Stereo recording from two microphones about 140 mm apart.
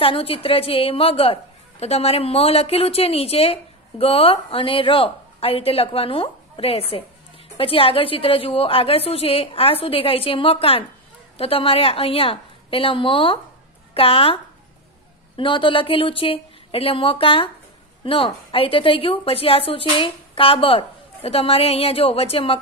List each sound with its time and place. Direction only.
0.0 s a woman's voice: 40° left (ahead or behind)